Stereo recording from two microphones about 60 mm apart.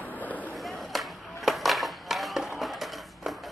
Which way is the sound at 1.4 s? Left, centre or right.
Centre.